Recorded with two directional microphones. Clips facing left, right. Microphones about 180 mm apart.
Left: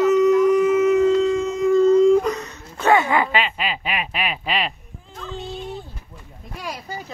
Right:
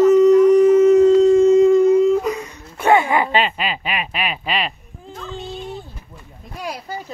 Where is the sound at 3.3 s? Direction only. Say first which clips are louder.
Right 3 dB; 40° right (ahead or behind).